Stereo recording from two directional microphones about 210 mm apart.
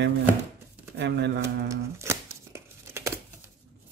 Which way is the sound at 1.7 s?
15° right (ahead or behind).